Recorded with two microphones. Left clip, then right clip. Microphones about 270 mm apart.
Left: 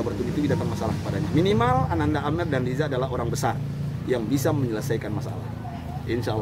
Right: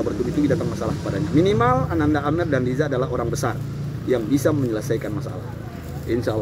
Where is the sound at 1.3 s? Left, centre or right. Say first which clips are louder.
Right 3 dB; centre.